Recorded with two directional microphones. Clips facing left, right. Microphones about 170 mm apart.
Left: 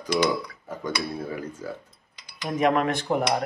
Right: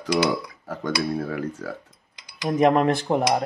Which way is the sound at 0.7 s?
75° right (ahead or behind).